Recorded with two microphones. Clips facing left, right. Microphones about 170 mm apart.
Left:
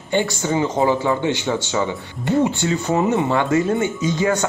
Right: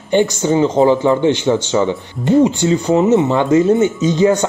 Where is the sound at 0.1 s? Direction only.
20° right (ahead or behind).